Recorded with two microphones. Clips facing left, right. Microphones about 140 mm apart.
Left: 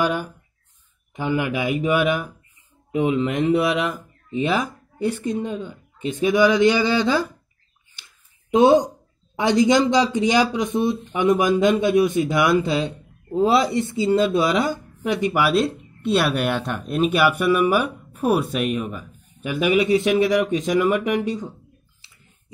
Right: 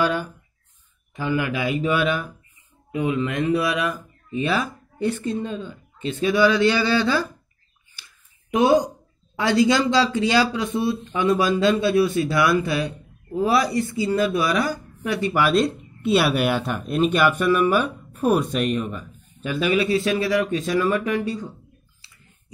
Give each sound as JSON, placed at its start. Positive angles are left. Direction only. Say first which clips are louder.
{"t": 0.0, "sound": "speech", "louder": "even", "side_deg": 15}
{"t": 7.9, "sound": "a sound", "louder": "right 1 dB", "side_deg": 25}
{"t": 9.4, "sound": "speech", "louder": "left 2 dB", "side_deg": 20}